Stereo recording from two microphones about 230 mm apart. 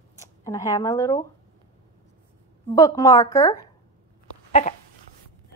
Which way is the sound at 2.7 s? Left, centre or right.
Centre.